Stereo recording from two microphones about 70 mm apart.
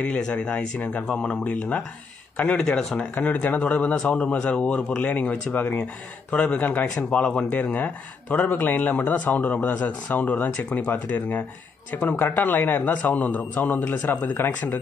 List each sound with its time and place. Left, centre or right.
0.0 s speech: centre
2.6 s speech: centre
3.0 s speech: centre